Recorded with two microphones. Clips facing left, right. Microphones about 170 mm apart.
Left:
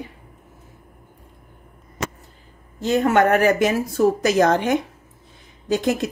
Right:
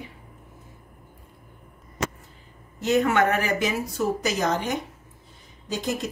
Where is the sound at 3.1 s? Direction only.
50° left (ahead or behind); by 6.0 s 70° left (ahead or behind).